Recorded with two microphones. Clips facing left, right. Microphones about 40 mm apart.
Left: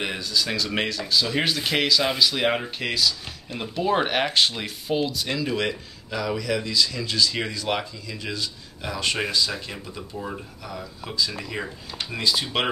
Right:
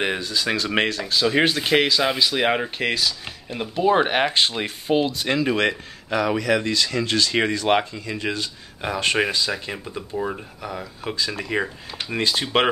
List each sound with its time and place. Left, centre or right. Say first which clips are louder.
0.2 s speech: right 2 dB; right
3.7 s speech: right 4 dB; centre; by 9.2 s right
9.5 s speech: right 4 dB; right